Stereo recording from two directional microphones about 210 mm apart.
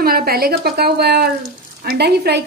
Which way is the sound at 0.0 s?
45° right (ahead or behind).